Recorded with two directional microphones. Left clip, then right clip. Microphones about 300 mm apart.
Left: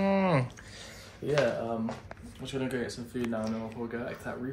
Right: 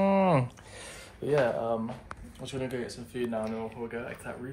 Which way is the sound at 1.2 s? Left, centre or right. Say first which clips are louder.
Right 3 dB; right.